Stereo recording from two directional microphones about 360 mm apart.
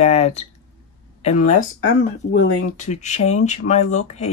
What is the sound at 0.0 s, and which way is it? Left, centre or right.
Speech, centre.